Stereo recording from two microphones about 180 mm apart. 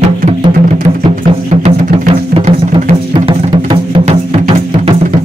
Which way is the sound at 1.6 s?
35° right (ahead or behind).